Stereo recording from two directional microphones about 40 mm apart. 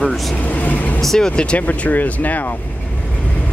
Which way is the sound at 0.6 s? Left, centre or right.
Left.